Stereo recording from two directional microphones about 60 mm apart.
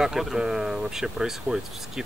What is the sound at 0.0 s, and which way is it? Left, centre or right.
Speech, centre.